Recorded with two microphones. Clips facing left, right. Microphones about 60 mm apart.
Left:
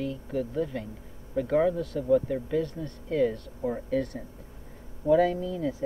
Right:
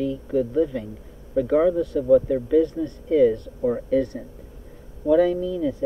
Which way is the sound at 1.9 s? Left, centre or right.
Centre.